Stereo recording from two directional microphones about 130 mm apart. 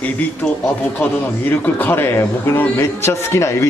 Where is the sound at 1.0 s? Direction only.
15° left (ahead or behind).